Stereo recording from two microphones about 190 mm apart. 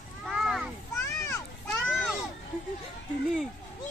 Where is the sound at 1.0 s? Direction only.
15° left (ahead or behind).